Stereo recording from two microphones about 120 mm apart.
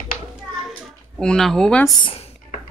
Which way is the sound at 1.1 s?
5° left (ahead or behind).